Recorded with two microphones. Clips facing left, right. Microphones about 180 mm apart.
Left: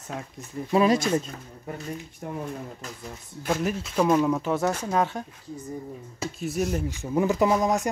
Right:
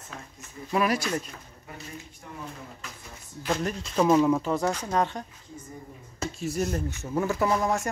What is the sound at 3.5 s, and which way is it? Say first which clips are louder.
Speech: left 2 dB; 5° left (ahead or behind).